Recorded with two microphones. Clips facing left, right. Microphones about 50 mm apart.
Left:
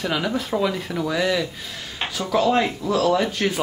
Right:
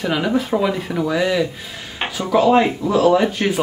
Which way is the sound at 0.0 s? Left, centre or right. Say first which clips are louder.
Right 5 dB; centre.